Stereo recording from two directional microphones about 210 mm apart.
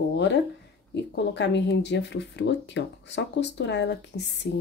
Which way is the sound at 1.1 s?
55° left (ahead or behind).